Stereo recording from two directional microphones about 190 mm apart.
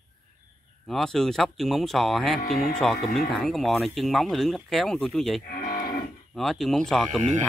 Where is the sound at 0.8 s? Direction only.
Centre (ahead or behind).